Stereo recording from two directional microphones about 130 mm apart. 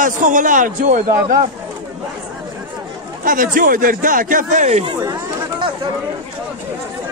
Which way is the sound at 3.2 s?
90° right.